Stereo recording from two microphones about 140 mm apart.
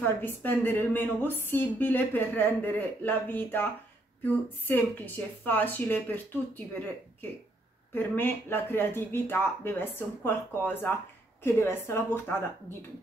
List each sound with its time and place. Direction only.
0.0 s a woman's voice: 15° left (ahead or behind)
4.6 s a woman's voice: 15° left (ahead or behind)
7.9 s a woman's voice: 15° left (ahead or behind)